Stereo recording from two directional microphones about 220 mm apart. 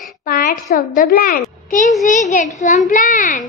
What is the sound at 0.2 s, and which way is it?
A woman's voice, 40° left (ahead or behind).